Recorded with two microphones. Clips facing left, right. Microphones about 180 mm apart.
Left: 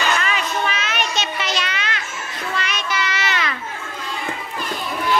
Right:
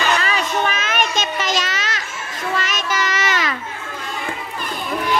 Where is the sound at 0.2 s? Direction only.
45° right (ahead or behind).